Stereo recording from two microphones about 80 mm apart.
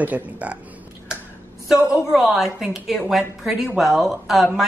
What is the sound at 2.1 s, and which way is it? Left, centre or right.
Speech, centre.